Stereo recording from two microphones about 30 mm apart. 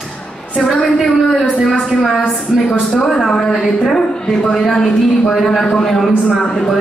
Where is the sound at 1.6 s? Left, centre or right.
Centre.